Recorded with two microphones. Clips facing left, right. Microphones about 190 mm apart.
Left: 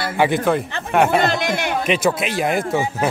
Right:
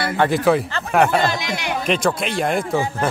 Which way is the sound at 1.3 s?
50° left (ahead or behind).